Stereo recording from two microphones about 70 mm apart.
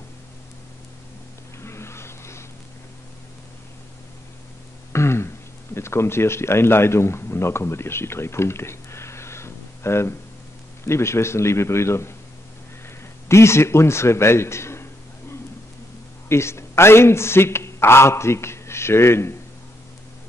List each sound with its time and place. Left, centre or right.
1.6 s a sound: left
4.9 s throat clearing: left
5.8 s a man's voice: left
13.3 s a man's voice: left